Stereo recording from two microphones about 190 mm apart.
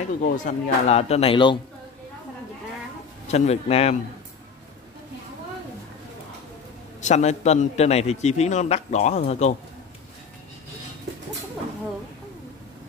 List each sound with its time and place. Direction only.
0.2 s a man's voice: 35° left (ahead or behind)
3.3 s a man's voice: 35° left (ahead or behind)
7.0 s a man's voice: 35° left (ahead or behind)